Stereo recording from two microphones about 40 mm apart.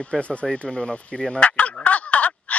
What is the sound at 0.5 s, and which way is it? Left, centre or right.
Speech, centre.